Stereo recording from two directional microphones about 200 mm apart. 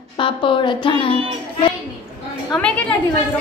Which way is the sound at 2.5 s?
5° left (ahead or behind).